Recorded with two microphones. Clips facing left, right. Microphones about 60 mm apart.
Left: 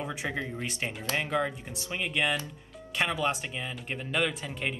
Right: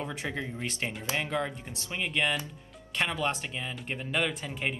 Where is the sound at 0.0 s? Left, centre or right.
Centre.